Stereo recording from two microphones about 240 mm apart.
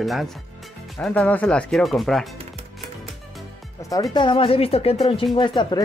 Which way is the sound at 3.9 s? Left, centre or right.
Centre.